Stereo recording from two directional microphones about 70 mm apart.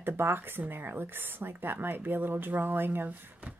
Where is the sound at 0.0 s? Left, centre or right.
Right.